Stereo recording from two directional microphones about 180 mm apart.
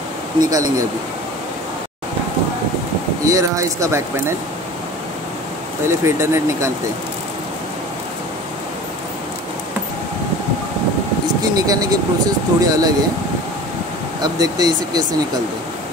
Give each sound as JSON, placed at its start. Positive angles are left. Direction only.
{"t": 0.4, "sound": "speech", "side_deg": -20}
{"t": 3.3, "sound": "speech", "side_deg": -15}
{"t": 5.9, "sound": "speech", "side_deg": -15}
{"t": 11.5, "sound": "speech", "side_deg": -20}
{"t": 14.2, "sound": "speech", "side_deg": -20}